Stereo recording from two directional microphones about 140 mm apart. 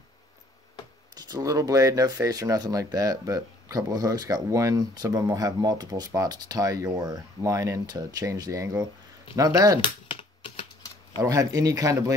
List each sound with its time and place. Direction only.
1.1 s speech: 25° right (ahead or behind)
9.8 s computer keyboard: 35° left (ahead or behind)
11.1 s speech: 25° right (ahead or behind)